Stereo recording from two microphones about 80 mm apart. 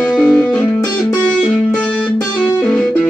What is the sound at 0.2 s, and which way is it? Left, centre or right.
Music, centre.